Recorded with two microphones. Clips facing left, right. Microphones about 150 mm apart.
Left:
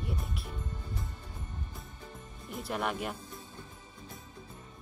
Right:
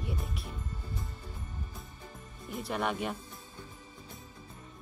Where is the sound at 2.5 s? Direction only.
Centre (ahead or behind).